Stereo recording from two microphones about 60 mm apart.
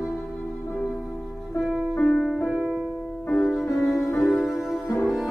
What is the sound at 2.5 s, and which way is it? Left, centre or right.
Music, centre.